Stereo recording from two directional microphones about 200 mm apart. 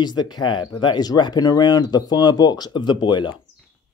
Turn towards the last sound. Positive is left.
turn(degrees=25)  # may be behind; listen again after turning